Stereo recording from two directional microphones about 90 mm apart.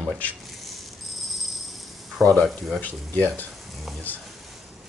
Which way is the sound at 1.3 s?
Centre (ahead or behind).